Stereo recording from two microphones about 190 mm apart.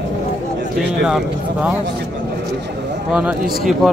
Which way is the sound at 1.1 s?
5° right (ahead or behind).